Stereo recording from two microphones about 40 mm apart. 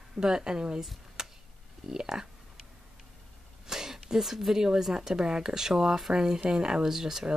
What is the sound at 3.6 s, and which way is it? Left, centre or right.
Speech, centre.